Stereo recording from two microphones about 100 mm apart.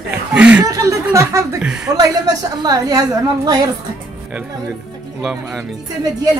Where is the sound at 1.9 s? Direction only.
40° right (ahead or behind).